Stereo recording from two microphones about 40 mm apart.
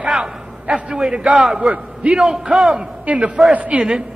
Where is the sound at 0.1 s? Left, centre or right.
Centre.